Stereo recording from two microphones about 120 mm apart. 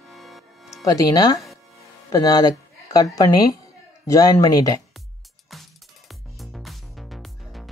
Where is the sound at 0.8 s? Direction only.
30° left (ahead or behind).